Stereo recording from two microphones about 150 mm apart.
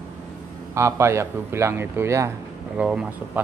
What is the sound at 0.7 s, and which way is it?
Speech, 15° right (ahead or behind).